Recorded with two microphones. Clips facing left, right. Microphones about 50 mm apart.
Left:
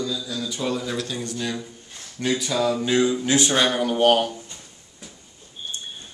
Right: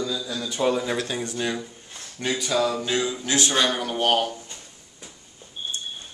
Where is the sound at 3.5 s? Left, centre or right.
Centre.